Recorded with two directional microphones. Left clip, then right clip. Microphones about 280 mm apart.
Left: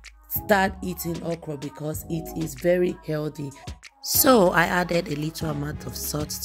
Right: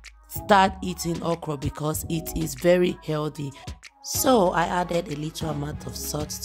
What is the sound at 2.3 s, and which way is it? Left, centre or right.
Speech, centre.